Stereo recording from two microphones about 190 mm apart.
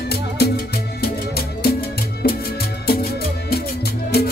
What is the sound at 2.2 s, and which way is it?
Music, 55° left (ahead or behind).